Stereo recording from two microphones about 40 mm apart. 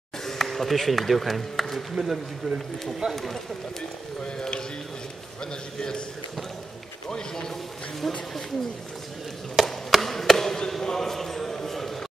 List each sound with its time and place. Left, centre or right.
0.2 s speech: centre
3.0 s speech: centre
4.4 s a man's voice: centre
7.1 s a man's voice: centre
9.7 s chop: centre
10.7 s a sound: centre